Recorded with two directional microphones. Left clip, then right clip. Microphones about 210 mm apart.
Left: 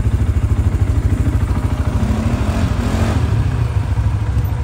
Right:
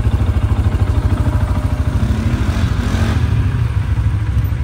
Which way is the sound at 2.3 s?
40° left (ahead or behind).